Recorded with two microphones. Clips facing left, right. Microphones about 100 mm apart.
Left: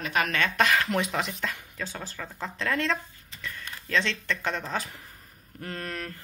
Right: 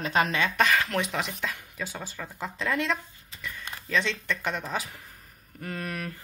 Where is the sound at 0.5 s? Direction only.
Centre (ahead or behind).